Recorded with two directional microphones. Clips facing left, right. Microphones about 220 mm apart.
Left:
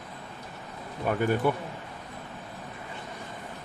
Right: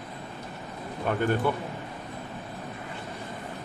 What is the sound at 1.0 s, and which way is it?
Speech, 10° left (ahead or behind).